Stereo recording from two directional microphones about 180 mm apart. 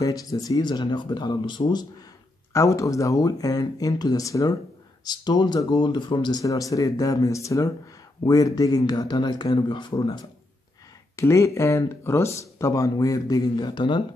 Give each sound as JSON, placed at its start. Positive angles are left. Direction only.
{"t": 0.0, "sound": "speech", "side_deg": 20}